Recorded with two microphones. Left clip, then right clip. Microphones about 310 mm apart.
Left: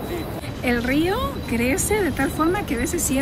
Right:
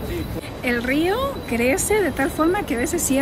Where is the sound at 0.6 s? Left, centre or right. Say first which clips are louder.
Right 1 dB; centre.